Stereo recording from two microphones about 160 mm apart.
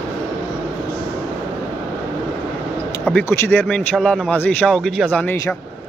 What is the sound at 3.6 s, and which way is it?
Speech, 5° left (ahead or behind).